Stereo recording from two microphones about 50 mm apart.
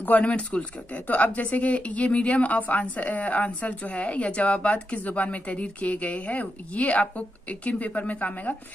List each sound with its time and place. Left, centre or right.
0.0 s speech: left